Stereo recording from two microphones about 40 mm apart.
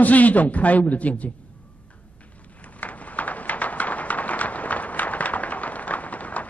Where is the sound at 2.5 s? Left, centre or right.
Left.